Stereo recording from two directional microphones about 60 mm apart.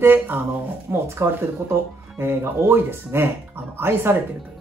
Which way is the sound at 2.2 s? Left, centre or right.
Right.